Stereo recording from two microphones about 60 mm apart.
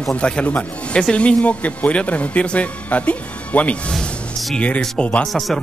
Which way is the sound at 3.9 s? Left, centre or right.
Centre.